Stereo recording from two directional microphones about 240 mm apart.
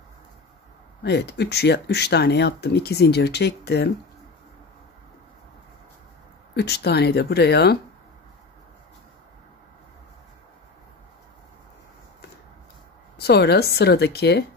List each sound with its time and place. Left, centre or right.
1.0 s speech: left
6.5 s speech: left
13.2 s speech: left